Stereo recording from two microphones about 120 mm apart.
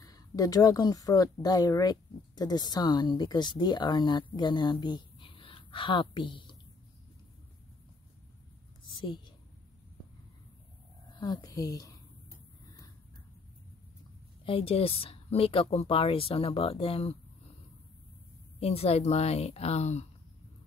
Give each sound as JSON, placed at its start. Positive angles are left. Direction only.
{"t": 0.0, "sound": "speech", "side_deg": 30}
{"t": 11.1, "sound": "a woman's voice", "side_deg": 35}
{"t": 14.4, "sound": "speech", "side_deg": 50}
{"t": 18.6, "sound": "a woman's voice", "side_deg": 55}